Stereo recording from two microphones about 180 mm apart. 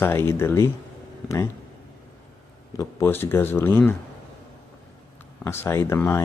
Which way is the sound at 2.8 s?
15° left (ahead or behind).